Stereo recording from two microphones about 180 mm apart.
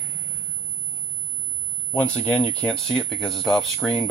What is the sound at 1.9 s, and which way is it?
Speech, 5° left (ahead or behind).